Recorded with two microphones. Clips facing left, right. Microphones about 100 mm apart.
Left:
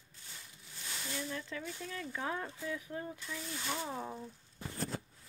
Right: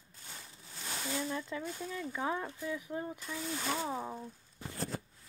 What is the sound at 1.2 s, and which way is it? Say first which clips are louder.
Speech: right 2 dB; 20° right (ahead or behind).